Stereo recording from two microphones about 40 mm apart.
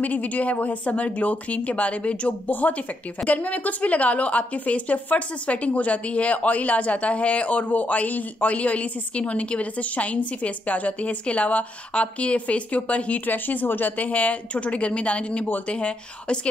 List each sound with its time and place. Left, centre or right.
0.0 s a woman's voice: left
13.3 s a woman's voice: left